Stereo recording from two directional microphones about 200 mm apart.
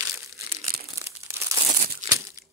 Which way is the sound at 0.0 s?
15° right (ahead or behind).